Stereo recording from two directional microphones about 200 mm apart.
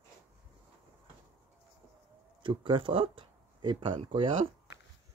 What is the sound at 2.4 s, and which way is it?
Speech, 25° right (ahead or behind).